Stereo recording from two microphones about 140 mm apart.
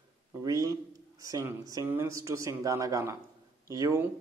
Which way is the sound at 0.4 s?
25° right (ahead or behind).